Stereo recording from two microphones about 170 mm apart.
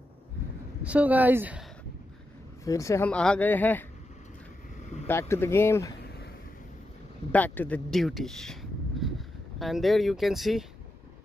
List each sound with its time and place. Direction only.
0.8 s speech: 10° right (ahead or behind)
2.6 s speech: 20° left (ahead or behind)
5.3 s speech: 15° left (ahead or behind)
6.0 s a sound: 70° left (ahead or behind)
7.3 s speech: 10° left (ahead or behind)